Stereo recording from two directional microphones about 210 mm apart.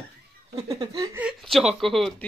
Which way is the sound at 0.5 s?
15° right (ahead or behind).